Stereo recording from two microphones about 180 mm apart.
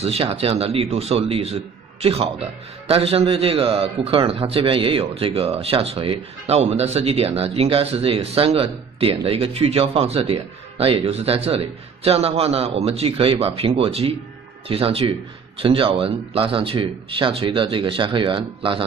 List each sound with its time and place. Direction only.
0.0 s a man's voice: 35° right (ahead or behind)